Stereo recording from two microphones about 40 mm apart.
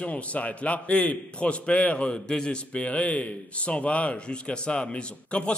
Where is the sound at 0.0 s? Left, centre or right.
Left.